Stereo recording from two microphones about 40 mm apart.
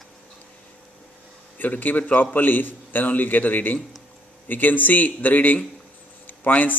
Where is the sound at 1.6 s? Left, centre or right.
Left.